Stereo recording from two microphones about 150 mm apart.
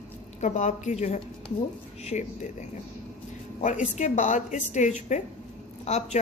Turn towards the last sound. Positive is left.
turn(degrees=50)  # may be behind; listen again after turning